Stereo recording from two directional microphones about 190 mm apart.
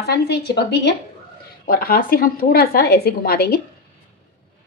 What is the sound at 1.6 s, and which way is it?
A woman's voice, 50° left (ahead or behind).